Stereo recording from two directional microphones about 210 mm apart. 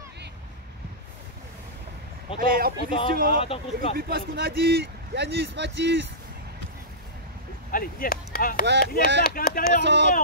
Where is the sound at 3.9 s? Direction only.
45° right (ahead or behind).